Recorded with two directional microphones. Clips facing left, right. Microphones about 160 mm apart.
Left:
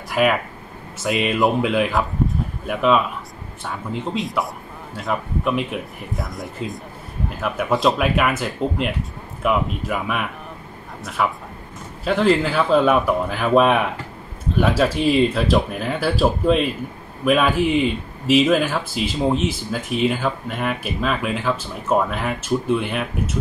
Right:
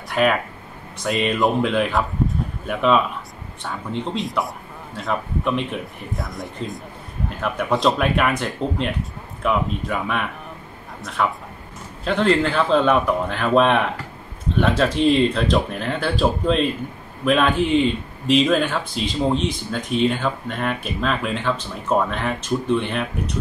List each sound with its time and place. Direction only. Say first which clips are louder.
0.1 s speech: even; 5° left (ahead or behind)